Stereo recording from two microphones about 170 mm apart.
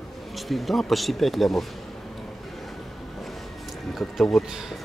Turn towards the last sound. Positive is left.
turn(degrees=0)  # may be behind; listen again after turning